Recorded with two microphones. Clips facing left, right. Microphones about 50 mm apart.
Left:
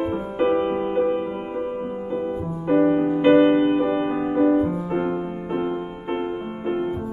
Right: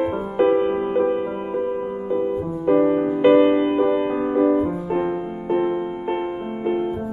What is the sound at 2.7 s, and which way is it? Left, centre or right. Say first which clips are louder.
Music: even; centre.